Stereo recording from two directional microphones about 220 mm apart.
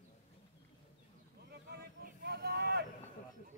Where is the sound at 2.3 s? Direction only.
45° right (ahead or behind).